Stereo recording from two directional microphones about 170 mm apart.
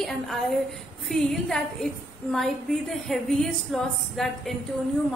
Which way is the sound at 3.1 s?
Centre (ahead or behind).